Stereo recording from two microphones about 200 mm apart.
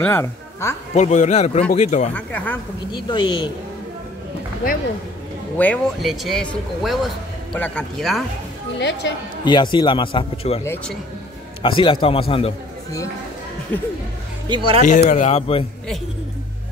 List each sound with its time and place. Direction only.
0.0 s speech: 15° left (ahead or behind)
0.9 s a man's voice: 35° left (ahead or behind)
2.1 s speech: 10° left (ahead or behind)
2.9 s a man's voice: 25° left (ahead or behind)
5.6 s speech: 5° left (ahead or behind)
8.7 s speech: 60° left (ahead or behind)
9.4 s a man's voice: 20° left (ahead or behind)
11.6 s a man's voice: 25° left (ahead or behind)
13.7 s speech: 10° left (ahead or behind)
14.8 s a man's voice: 40° left (ahead or behind)